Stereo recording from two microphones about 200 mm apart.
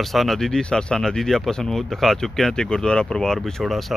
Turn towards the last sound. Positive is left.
turn(degrees=0)  # may be behind; listen again after turning